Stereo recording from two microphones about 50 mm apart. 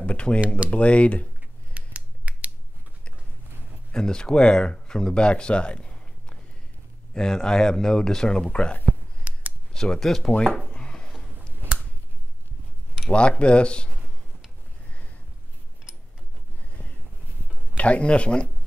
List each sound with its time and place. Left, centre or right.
0.0 s speech: left
1.7 s finger snapping: right
3.9 s speech: centre
9.3 s a sound: right
9.7 s speech: centre
10.5 s a sound: left
13.1 s speech: left
17.7 s speech: left